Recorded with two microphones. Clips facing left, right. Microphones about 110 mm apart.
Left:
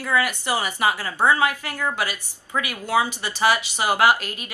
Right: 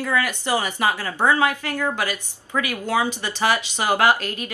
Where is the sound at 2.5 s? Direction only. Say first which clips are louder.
Even; 15° left (ahead or behind).